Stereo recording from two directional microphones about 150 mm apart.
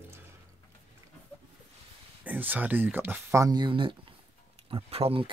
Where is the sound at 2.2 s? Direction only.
10° right (ahead or behind).